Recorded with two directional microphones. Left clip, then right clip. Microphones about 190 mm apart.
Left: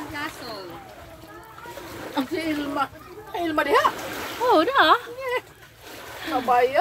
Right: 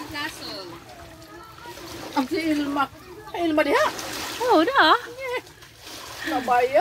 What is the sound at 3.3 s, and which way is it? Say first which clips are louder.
Speech: even; 40° right (ahead or behind).